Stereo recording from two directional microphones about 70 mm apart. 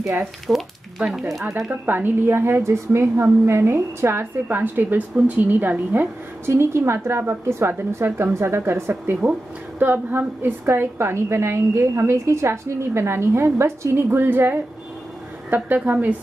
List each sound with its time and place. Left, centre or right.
0.5 s speech: centre
1.7 s a woman's voice: right
6.5 s a woman's voice: right